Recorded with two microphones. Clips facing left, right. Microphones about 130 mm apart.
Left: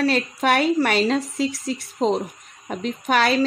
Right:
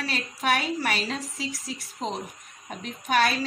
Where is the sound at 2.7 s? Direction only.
70° left (ahead or behind).